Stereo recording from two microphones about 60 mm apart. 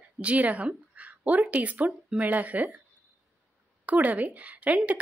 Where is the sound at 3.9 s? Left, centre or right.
Right.